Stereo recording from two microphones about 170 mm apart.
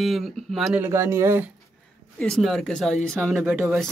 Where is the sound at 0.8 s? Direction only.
15° right (ahead or behind).